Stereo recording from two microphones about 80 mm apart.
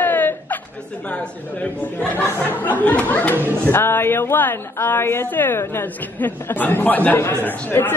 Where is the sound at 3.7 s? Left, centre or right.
Left.